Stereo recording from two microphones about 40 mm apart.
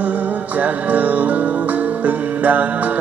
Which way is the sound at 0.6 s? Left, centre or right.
Right.